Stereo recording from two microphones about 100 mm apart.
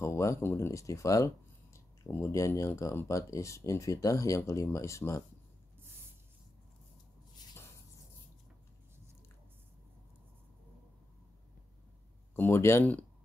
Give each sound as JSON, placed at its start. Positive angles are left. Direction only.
{"t": 0.0, "sound": "speech", "side_deg": 30}
{"t": 12.4, "sound": "speech", "side_deg": 25}